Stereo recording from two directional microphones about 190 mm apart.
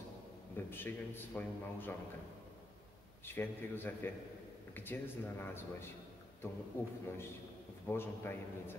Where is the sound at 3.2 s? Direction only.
10° left (ahead or behind).